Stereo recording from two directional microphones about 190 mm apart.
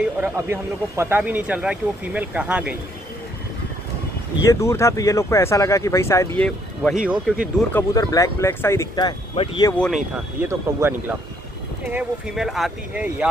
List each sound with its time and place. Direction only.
0.2 s speech: 10° right (ahead or behind)
4.5 s speech: 15° left (ahead or behind)
6.8 s speech: 5° right (ahead or behind)
7.7 s speech: 20° left (ahead or behind)
9.7 s speech: 5° left (ahead or behind)
10.1 s speech: 10° right (ahead or behind)